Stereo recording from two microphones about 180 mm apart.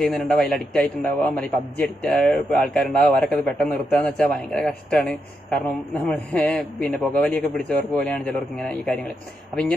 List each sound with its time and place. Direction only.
0.0 s a man's voice: centre (ahead or behind)